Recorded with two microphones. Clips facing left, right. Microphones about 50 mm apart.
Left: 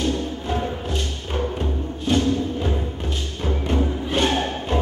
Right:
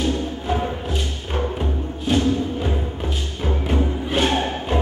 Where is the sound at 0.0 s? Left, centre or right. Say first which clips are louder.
Right 1 dB; centre.